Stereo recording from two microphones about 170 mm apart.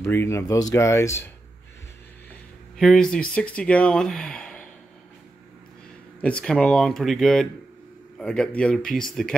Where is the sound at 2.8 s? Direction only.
5° left (ahead or behind).